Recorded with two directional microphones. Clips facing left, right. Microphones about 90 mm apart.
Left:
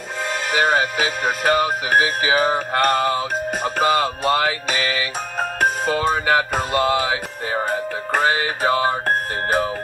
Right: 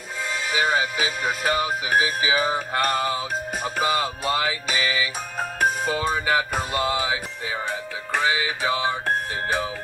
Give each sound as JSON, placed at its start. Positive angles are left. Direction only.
{"t": 0.3, "sound": "speech", "side_deg": 60}
{"t": 7.5, "sound": "music", "side_deg": 45}